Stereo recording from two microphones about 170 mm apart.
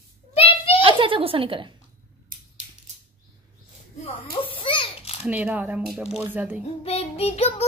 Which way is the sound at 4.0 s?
35° left (ahead or behind).